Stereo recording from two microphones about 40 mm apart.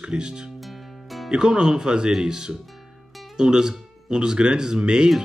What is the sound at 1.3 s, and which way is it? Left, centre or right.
Speech, centre.